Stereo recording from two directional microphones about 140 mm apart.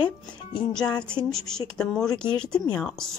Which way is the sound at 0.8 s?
5° left (ahead or behind).